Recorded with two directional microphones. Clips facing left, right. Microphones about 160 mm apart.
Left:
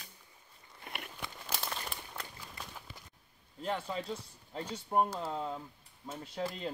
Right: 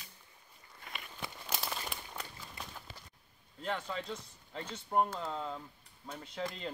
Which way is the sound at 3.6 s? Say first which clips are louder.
Left 2 dB; 10° left (ahead or behind).